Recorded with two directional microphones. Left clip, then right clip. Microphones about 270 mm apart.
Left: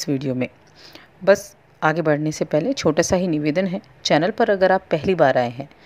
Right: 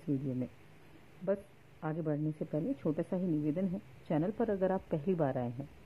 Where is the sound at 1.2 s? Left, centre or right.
Left.